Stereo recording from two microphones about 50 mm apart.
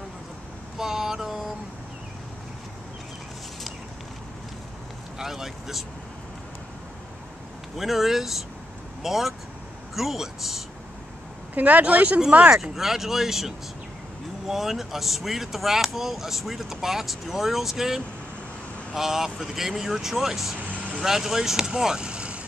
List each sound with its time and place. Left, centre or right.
0.7 s vehicle: centre
5.2 s speech: centre
7.7 s speech: centre
11.5 s speech: right
12.7 s speech: centre
14.5 s speech: centre
20.7 s vehicle: right
21.0 s speech: centre